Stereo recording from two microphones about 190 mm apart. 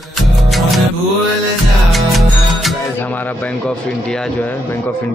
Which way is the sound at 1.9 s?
Centre (ahead or behind).